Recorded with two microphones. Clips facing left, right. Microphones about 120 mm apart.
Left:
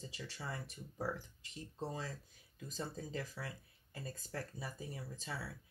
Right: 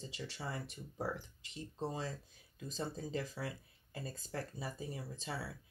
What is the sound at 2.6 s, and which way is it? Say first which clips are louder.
Speech: right 3 dB; 25° right (ahead or behind).